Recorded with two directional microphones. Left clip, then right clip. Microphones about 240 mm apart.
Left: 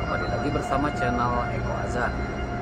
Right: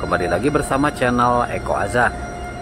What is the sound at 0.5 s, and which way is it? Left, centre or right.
Speech, right.